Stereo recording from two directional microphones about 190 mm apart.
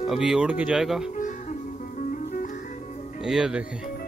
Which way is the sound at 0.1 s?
Centre (ahead or behind).